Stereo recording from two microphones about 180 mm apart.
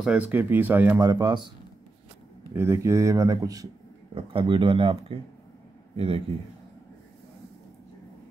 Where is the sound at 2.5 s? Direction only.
15° right (ahead or behind).